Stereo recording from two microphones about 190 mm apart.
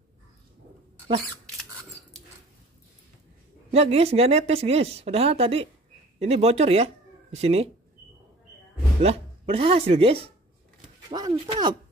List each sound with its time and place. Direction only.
3.7 s speech: 30° right (ahead or behind)
9.0 s speech: 30° right (ahead or behind)